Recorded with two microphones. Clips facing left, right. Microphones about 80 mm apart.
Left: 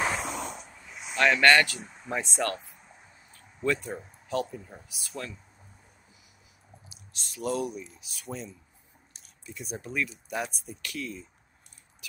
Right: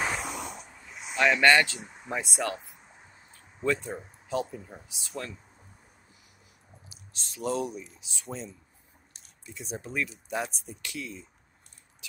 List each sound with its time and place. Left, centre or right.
0.0 s a sound: centre
1.1 s speech: centre
3.6 s speech: right
4.5 s speech: centre
4.8 s speech: right
6.9 s speech: right
12.0 s a sound: right